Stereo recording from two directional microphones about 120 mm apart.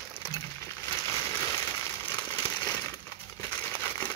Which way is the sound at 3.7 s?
15° left (ahead or behind).